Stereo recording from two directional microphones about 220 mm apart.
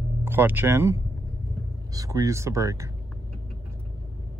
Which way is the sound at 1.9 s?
15° right (ahead or behind).